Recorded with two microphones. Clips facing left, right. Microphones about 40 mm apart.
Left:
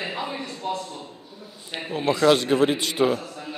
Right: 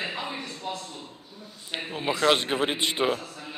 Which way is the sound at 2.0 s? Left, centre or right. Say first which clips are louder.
Left 4 dB; centre.